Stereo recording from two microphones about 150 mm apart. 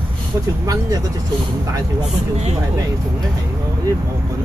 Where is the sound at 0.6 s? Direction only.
25° right (ahead or behind).